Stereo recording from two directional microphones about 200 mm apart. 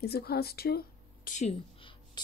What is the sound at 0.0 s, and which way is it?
Speech, 50° left (ahead or behind).